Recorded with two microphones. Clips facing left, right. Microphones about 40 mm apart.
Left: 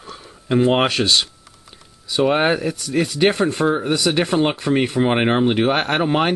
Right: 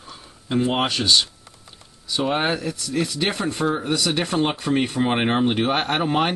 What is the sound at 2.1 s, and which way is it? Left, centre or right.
Speech, left.